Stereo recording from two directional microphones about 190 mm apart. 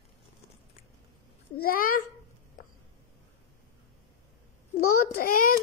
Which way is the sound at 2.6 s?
45° left (ahead or behind).